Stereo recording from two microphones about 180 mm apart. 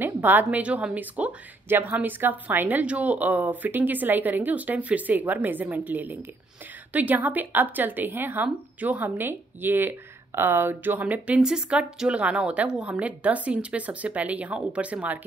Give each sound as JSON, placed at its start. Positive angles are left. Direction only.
{"t": 0.0, "sound": "a woman's voice", "side_deg": -10}